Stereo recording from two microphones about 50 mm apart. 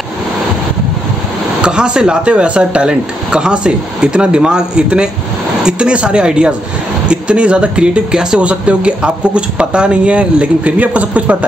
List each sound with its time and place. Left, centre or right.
1.6 s speech: centre